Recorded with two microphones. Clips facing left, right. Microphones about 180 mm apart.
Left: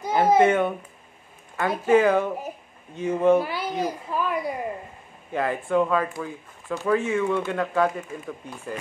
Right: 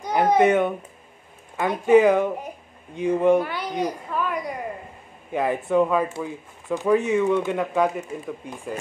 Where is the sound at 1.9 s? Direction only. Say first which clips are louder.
Right 3 dB; 15° right (ahead or behind).